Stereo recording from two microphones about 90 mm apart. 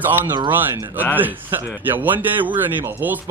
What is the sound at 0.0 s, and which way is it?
Speech, 20° right (ahead or behind).